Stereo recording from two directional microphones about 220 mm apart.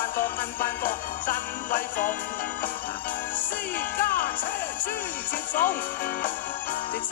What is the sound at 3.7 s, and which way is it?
Speech, 40° left (ahead or behind).